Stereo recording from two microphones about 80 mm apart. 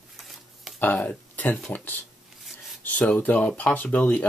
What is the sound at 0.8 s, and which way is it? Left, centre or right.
Speech, left.